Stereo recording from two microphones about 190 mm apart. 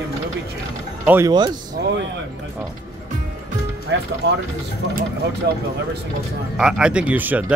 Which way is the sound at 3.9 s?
65° right (ahead or behind).